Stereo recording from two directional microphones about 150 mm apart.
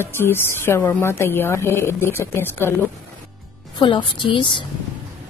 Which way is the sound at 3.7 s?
30° left (ahead or behind).